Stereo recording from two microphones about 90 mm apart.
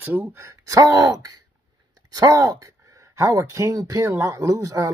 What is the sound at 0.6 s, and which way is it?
Speech, 40° right (ahead or behind).